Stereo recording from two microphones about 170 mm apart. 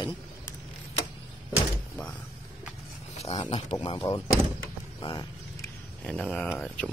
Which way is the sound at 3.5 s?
40° left (ahead or behind).